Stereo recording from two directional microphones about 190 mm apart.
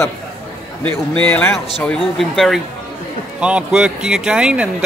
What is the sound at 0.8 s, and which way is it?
Speech, 10° left (ahead or behind).